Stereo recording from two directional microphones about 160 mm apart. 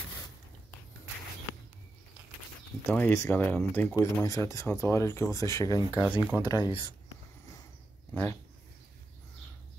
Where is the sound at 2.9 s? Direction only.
15° left (ahead or behind).